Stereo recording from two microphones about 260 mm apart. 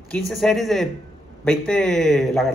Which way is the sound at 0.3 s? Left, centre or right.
Centre.